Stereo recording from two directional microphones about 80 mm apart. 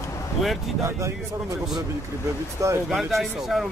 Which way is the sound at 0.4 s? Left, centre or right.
Centre.